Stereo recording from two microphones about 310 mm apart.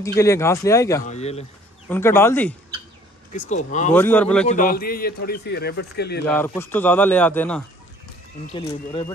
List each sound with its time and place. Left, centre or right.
0.0 s speech: centre
1.0 s speech: left
1.9 s speech: centre
3.3 s speech: left
3.9 s speech: centre
4.5 s a man's voice: left
6.2 s speech: centre